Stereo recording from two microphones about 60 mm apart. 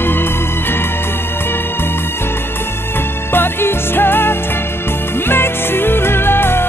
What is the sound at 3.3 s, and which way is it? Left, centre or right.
Music, left.